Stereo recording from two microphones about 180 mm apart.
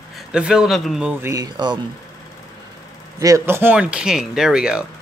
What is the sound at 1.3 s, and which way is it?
Speech, 20° right (ahead or behind).